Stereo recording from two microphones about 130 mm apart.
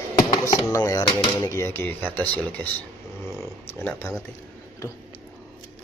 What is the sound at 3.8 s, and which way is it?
Speech, 20° left (ahead or behind).